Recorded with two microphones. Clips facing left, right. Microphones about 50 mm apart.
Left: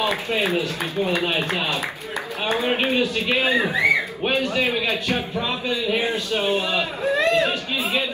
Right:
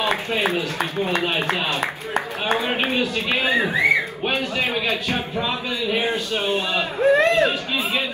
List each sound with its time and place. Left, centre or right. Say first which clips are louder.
0.4 s a man's voice: right 1 dB; right
3.3 s a man's voice: right 1 dB; right
5.9 s speech: right 1 dB; centre
6.5 s a man's voice: even; right